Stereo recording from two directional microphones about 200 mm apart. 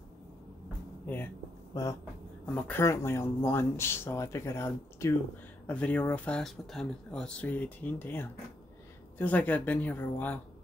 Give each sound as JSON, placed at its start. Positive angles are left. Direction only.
{"t": 1.0, "sound": "speech", "side_deg": 10}